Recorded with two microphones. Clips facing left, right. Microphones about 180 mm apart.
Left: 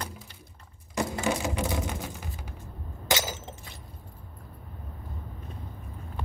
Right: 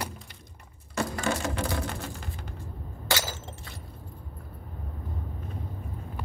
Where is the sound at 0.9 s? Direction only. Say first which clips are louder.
Left 1 dB; 15° left (ahead or behind).